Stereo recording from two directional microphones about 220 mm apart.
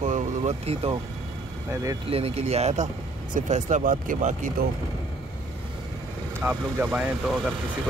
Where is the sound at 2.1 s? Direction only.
25° right (ahead or behind).